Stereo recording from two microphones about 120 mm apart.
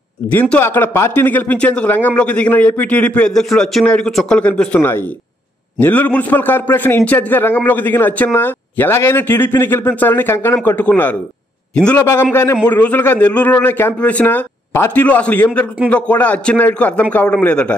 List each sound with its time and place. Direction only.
0.3 s a man's voice: 15° left (ahead or behind)
12.0 s a man's voice: 20° left (ahead or behind)